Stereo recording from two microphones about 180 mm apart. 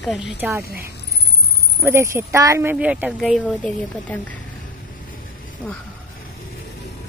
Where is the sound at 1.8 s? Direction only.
15° right (ahead or behind); by 4.3 s 5° left (ahead or behind).